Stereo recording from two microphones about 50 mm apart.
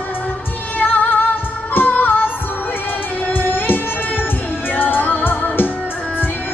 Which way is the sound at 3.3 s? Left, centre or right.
Left.